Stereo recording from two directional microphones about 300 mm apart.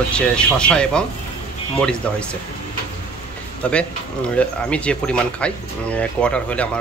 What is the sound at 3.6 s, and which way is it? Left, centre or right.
Speech, centre.